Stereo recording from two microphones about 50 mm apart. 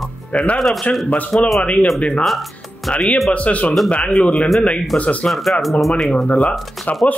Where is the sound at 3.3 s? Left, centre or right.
Left.